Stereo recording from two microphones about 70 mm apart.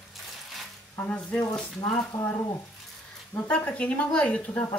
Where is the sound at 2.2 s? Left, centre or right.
Left.